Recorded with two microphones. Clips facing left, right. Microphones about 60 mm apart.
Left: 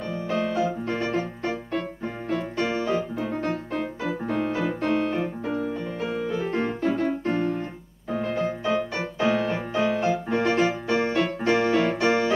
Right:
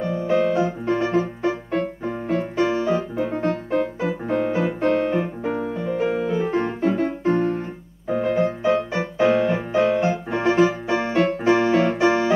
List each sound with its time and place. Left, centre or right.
0.0 s music: centre
7.3 s keyboard: right
8.1 s music: centre
10.3 s keyboard: centre
10.9 s music: right
11.4 s keyboard: right